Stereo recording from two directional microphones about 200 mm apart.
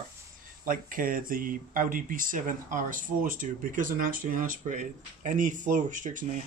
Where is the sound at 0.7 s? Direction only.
45° right (ahead or behind).